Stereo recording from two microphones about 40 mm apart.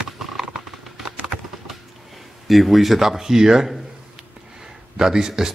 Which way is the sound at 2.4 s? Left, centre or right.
Centre.